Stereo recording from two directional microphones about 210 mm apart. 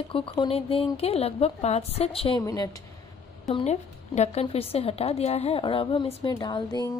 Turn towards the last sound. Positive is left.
turn(degrees=20)  # may be behind; listen again after turning